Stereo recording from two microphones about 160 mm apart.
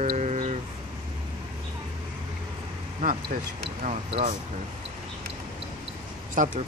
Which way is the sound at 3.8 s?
40° right (ahead or behind).